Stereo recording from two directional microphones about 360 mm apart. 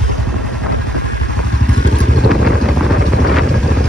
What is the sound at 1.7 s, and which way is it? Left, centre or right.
Vehicle, right.